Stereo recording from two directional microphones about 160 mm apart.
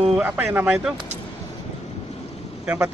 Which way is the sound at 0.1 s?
5° right (ahead or behind).